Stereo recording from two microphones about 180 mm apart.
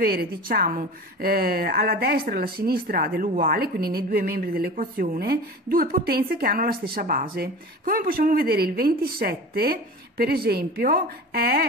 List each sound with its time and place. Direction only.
0.0 s a woman's voice: 60° right (ahead or behind)